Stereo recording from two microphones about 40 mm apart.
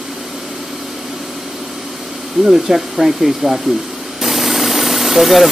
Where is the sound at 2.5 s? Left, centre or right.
Centre.